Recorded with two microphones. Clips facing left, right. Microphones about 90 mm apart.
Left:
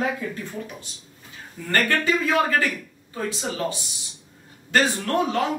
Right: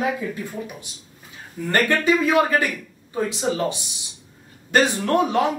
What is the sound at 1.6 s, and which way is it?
A woman's voice, 20° right (ahead or behind).